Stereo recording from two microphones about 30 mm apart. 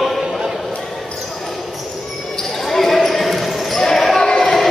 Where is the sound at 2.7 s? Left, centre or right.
Centre.